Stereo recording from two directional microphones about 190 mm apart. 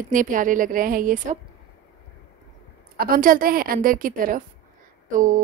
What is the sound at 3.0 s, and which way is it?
A woman's voice, 50° right (ahead or behind).